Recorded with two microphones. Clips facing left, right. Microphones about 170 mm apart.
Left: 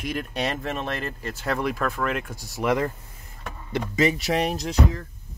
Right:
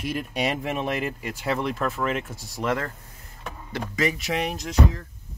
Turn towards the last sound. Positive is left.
turn(degrees=35)  # may be behind; listen again after turning